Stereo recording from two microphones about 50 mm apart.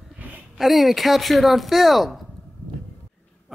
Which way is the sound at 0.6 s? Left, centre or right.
Centre.